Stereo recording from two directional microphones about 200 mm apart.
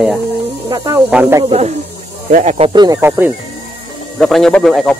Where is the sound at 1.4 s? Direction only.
30° right (ahead or behind).